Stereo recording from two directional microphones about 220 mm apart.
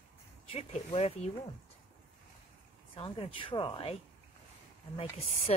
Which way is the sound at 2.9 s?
25° left (ahead or behind).